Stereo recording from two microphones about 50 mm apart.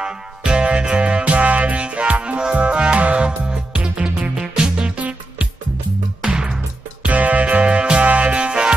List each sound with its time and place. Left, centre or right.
0.0 s music: centre
6.2 s music: centre
7.0 s music: right